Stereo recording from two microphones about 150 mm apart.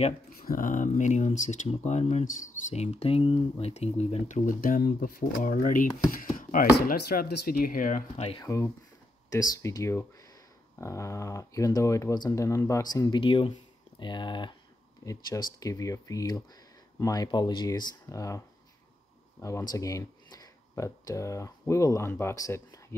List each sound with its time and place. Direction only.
0.3 s speech: 70° left (ahead or behind); by 4.4 s 45° left (ahead or behind)
4.5 s speech: 65° left (ahead or behind)
6.9 s speech: 80° left; by 8.0 s 65° left (ahead or behind)
8.4 s speech: 20° left (ahead or behind)
19.7 s speech: 20° left (ahead or behind)